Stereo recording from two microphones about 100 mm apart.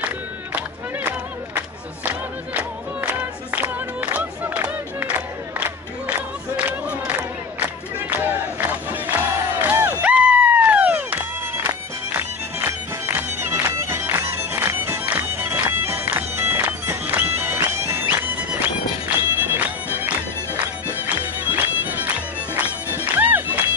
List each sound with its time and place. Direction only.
2.0 s music: 15° right (ahead or behind)
6.0 s crowd: 10° right (ahead or behind)
8.2 s battle cry: 15° right (ahead or behind)
21.1 s music: 15° right (ahead or behind)